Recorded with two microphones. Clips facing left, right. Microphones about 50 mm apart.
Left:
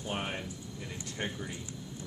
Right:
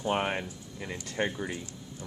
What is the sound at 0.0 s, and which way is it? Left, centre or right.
Speech, right.